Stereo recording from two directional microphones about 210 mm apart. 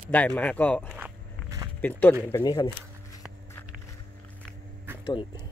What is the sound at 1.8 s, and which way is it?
Speech, 10° left (ahead or behind).